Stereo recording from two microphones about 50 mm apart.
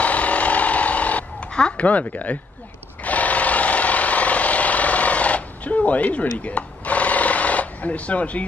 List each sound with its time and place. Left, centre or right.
0.0 s a sound: left
1.5 s speech: left
3.0 s jackhammer: left